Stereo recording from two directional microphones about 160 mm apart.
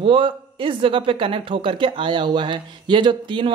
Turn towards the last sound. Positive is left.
turn(degrees=-30)  # may be behind; listen again after turning